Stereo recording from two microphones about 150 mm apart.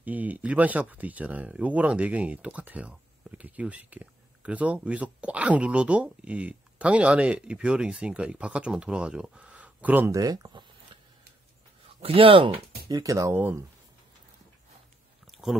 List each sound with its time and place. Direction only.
0.0 s speech: 10° right (ahead or behind)
12.0 s speech: 40° right (ahead or behind); by 13.7 s 15° right (ahead or behind)